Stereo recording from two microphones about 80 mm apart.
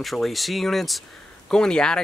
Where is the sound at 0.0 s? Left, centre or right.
Centre.